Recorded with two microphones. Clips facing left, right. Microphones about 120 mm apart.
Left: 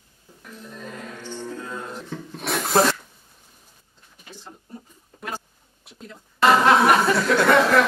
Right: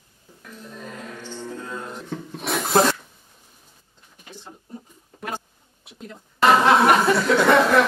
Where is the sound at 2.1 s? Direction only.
10° right (ahead or behind).